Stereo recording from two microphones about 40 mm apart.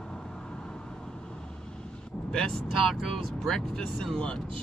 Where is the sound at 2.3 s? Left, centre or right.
Centre.